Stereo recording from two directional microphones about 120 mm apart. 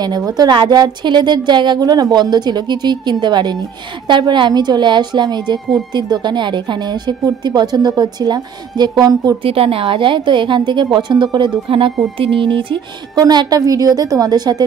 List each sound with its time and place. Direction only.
0.0 s a woman's voice: 35° right (ahead or behind)
9.4 s a woman's voice: 50° right (ahead or behind); by 14.6 s 35° right (ahead or behind)